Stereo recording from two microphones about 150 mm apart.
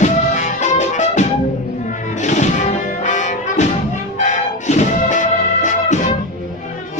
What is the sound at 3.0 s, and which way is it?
Brass instrument, 55° left (ahead or behind).